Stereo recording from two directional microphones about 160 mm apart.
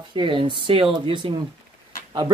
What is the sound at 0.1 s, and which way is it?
Speech, 30° right (ahead or behind).